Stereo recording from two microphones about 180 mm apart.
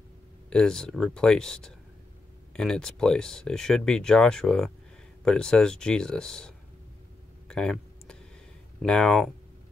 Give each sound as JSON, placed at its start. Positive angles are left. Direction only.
{"t": 0.5, "sound": "speech", "side_deg": 5}
{"t": 7.4, "sound": "a sound", "side_deg": 5}
{"t": 8.8, "sound": "speech", "side_deg": 5}